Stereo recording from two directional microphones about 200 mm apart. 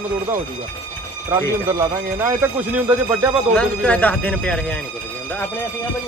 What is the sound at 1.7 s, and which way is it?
Speech, 15° right (ahead or behind).